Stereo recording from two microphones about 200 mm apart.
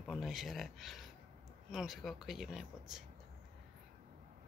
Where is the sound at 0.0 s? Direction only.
Centre (ahead or behind).